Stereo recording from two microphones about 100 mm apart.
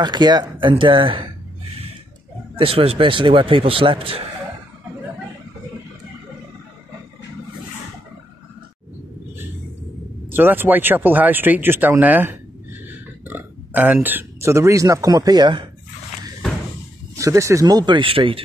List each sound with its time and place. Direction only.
0.0 s speech: 45° right (ahead or behind)
2.5 s speech: 70° right (ahead or behind)
10.3 s speech: 20° right (ahead or behind); by 15.6 s 45° right (ahead or behind)
17.1 s speech: 30° right (ahead or behind)
17.6 s speech: 45° right (ahead or behind); by 18.4 s 60° right (ahead or behind)